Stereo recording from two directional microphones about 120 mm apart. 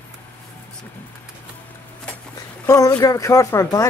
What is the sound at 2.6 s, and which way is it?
Speech, 25° left (ahead or behind).